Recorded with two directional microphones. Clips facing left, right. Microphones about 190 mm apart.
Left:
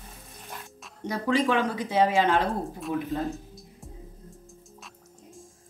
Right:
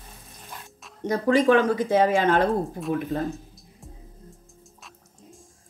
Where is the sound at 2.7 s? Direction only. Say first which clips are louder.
Right 3 dB; centre (ahead or behind).